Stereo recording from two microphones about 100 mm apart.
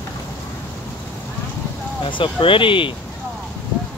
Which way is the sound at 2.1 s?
60° left (ahead or behind).